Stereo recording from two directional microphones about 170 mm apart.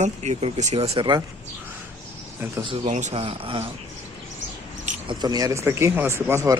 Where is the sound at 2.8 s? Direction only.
45° right (ahead or behind).